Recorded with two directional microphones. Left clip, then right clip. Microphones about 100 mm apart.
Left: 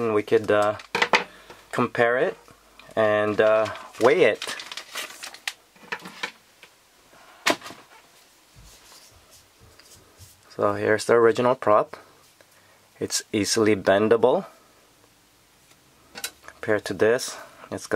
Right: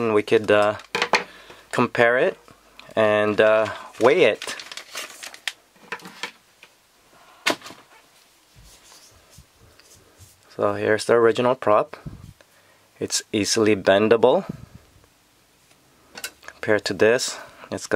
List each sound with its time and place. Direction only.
0.0 s speech: 25° right (ahead or behind)
0.7 s dishes: 15° right (ahead or behind)
1.7 s speech: 25° right (ahead or behind)
3.6 s speech: 15° right (ahead or behind)
4.4 s crumpling: 5° right (ahead or behind)
10.5 s speech: 10° right (ahead or behind)
16.1 s tick-tock: centre (ahead or behind)
16.4 s speech: 20° right (ahead or behind)